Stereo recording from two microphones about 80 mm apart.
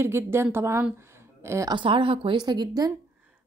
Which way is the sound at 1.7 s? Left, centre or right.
Right.